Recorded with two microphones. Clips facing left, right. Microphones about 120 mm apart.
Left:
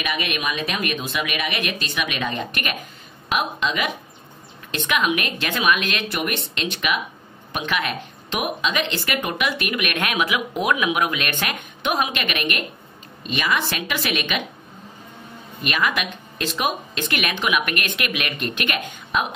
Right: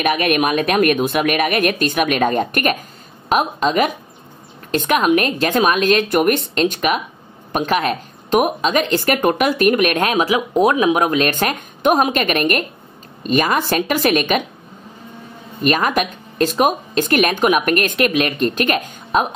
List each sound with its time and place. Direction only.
0.0 s a woman's voice: 50° right (ahead or behind)
15.6 s speech: 40° right (ahead or behind)